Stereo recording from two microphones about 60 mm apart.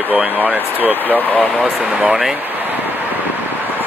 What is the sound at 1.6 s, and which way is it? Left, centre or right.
Speech, centre.